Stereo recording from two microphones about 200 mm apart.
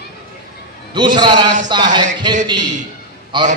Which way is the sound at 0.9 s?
20° right (ahead or behind).